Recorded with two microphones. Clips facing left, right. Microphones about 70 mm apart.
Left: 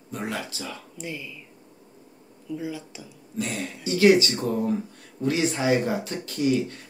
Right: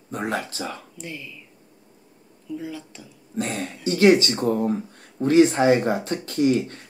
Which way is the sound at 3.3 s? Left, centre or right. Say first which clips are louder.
Right 3 dB; right.